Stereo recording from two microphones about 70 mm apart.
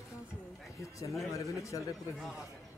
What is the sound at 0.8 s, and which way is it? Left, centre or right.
A man's voice, left.